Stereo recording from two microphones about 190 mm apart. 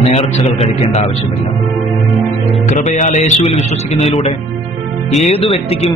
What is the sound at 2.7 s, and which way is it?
Speech, 40° left (ahead or behind).